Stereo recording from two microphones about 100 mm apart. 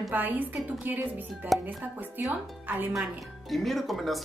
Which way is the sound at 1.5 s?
Centre (ahead or behind).